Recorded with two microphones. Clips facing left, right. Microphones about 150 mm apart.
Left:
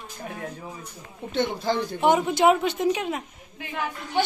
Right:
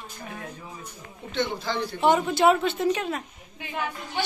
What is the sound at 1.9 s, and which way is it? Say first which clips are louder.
A man's voice: even; 20° left (ahead or behind).